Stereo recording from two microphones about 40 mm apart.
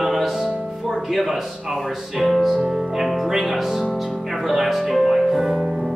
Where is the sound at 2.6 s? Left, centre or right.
Centre.